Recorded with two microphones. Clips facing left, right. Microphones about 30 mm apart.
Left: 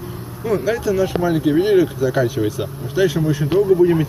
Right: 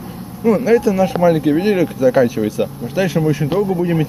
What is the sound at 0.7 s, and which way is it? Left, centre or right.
Speech, right.